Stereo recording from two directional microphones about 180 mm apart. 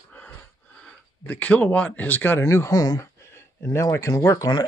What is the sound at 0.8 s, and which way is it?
Speech, 5° left (ahead or behind).